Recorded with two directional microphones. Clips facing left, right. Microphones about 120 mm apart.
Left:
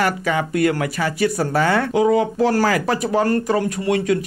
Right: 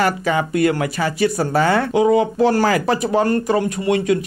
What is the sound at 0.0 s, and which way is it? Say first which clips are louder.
Speech: right 2 dB; 25° right (ahead or behind).